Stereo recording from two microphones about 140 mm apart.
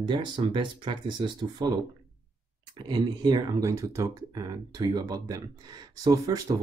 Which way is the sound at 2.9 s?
30° right (ahead or behind).